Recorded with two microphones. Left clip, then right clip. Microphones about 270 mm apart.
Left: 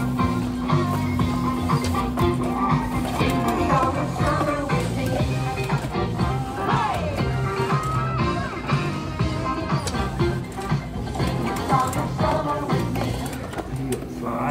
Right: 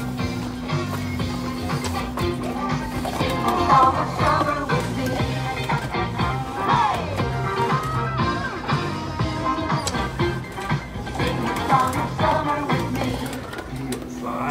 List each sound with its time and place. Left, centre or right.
0.2 s music: centre
2.2 s music: centre
3.5 s music: centre
11.4 s music: right